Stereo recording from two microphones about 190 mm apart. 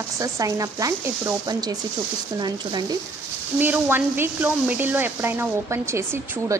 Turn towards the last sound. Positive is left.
turn(degrees=-15)  # may be behind; listen again after turning